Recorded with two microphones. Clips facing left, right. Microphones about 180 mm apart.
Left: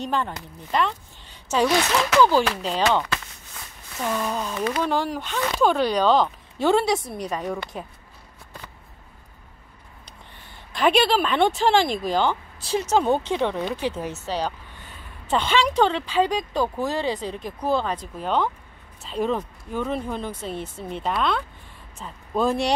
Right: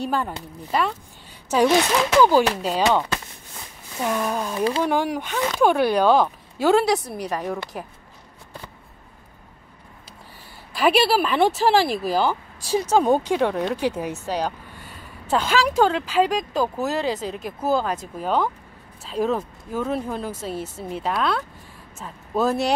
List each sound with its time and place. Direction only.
0.0 s speech: 10° right (ahead or behind)
4.6 s speech: 30° right (ahead or behind)
4.8 s speech: 15° right (ahead or behind)
10.7 s speech: 5° right (ahead or behind)